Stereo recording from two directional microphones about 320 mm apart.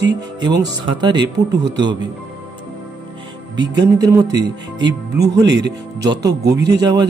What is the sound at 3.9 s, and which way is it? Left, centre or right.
Speech, centre.